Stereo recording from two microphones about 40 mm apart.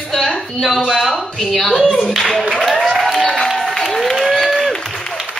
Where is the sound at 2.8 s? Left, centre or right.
Centre.